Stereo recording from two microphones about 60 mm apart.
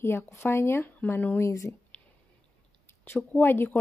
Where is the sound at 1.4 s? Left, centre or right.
Left.